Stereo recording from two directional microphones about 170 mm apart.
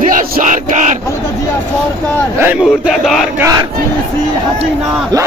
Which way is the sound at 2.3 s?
10° right (ahead or behind).